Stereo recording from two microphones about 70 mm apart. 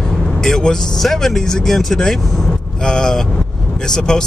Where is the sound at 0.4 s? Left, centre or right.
Centre.